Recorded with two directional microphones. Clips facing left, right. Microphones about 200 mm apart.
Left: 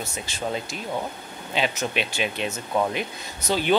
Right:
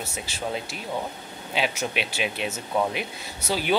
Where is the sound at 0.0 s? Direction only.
5° right (ahead or behind).